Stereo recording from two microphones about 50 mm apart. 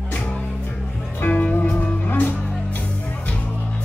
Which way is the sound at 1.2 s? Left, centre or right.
Left.